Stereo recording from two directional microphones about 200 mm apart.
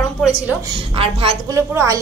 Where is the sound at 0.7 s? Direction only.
25° right (ahead or behind).